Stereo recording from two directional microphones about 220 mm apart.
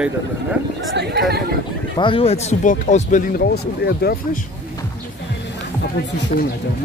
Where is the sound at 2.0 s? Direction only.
25° left (ahead or behind); by 4.4 s 45° left (ahead or behind).